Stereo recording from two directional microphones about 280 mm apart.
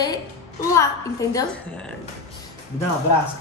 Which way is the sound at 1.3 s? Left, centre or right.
Centre.